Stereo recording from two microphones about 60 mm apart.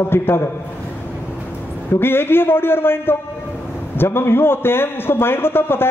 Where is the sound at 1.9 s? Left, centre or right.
Left.